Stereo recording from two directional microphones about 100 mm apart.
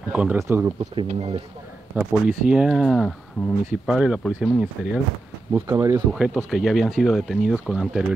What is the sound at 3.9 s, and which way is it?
Speech, 5° right (ahead or behind).